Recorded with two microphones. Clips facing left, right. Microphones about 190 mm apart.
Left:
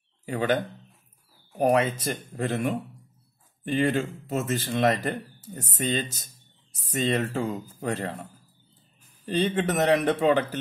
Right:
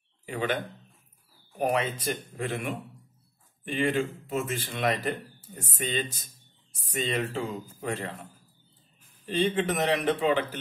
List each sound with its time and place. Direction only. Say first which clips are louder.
0.2 s speech: left 5 dB; 40° left (ahead or behind)
1.6 s a man's voice: left 5 dB; 45° left (ahead or behind)